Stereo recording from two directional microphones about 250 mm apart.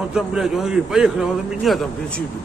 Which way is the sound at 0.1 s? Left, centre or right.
Centre.